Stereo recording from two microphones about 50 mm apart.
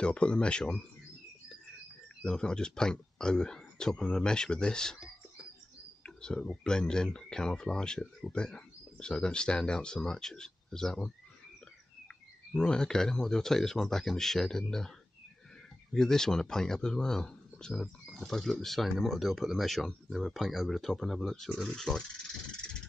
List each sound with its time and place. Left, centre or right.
0.0 s speech: left
2.2 s speech: centre
6.0 s a sound: centre
6.6 s speech: centre
12.5 s speech: centre
15.9 s speech: centre